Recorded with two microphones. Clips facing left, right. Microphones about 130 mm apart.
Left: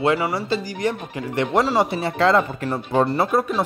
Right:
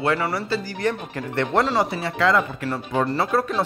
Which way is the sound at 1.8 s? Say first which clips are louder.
Left 2 dB; 25° left (ahead or behind).